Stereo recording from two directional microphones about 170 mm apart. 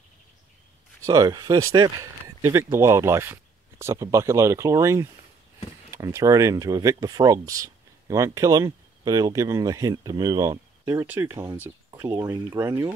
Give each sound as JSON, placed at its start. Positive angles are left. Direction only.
{"t": 1.0, "sound": "speech", "side_deg": -20}